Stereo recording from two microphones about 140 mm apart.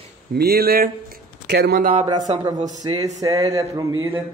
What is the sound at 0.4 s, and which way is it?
Speech, 90° right.